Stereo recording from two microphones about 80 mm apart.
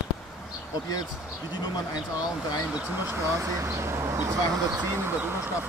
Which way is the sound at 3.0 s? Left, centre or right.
Right.